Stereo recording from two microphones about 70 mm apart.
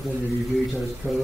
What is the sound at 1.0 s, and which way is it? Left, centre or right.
Speech, right.